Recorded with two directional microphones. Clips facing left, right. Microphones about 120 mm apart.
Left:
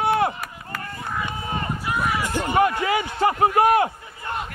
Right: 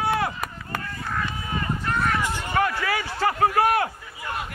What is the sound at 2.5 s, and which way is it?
A man's voice, 20° left (ahead or behind).